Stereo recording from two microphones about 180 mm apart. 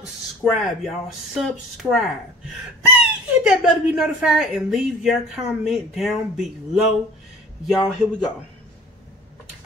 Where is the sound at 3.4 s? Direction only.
5° right (ahead or behind).